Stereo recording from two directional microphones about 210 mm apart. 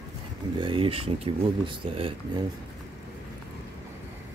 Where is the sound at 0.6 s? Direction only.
25° right (ahead or behind).